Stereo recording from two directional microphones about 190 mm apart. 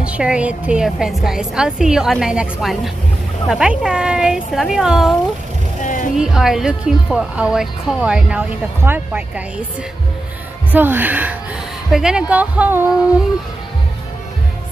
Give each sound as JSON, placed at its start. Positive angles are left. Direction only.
{"t": 0.0, "sound": "speech", "side_deg": -5}
{"t": 5.8, "sound": "music", "side_deg": 45}
{"t": 6.1, "sound": "speech", "side_deg": -5}
{"t": 10.7, "sound": "speech", "side_deg": -10}